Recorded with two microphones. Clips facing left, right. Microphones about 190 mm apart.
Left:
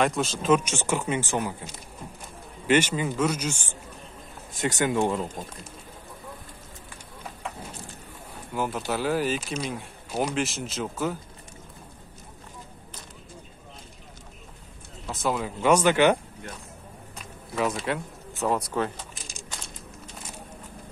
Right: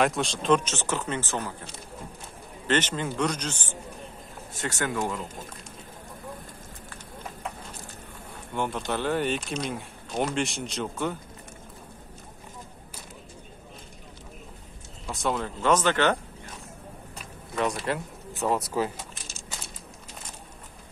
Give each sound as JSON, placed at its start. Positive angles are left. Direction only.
{"t": 0.0, "sound": "speech", "side_deg": 0}
{"t": 2.6, "sound": "speech", "side_deg": 10}
{"t": 4.6, "sound": "speech", "side_deg": 15}
{"t": 8.5, "sound": "speech", "side_deg": 5}
{"t": 15.0, "sound": "speech", "side_deg": 0}
{"t": 17.6, "sound": "speech", "side_deg": 0}